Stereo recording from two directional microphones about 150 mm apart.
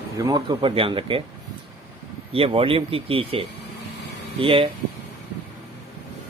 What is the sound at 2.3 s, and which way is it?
Speech, 40° right (ahead or behind).